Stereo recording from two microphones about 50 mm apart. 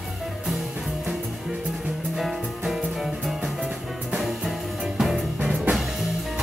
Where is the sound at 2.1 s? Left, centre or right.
Centre.